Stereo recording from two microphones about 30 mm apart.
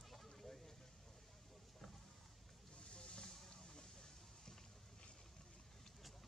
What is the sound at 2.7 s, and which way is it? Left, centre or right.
Vehicle, left.